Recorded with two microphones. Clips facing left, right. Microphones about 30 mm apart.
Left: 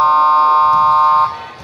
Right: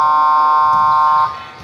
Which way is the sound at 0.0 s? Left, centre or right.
Centre.